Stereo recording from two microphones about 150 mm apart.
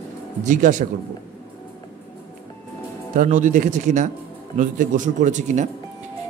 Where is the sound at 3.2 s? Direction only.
55° right (ahead or behind).